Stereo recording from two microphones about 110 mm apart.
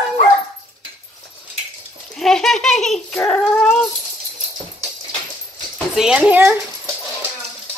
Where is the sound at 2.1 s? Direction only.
5° left (ahead or behind).